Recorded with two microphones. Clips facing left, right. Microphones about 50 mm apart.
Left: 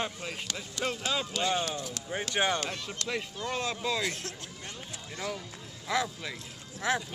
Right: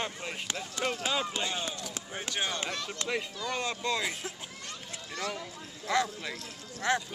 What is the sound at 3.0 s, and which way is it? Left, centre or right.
Speech, right.